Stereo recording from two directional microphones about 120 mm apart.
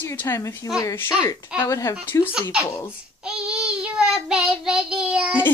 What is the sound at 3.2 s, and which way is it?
Child singing, 5° right (ahead or behind).